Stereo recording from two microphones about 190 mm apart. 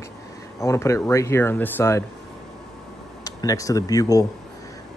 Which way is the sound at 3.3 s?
20° left (ahead or behind).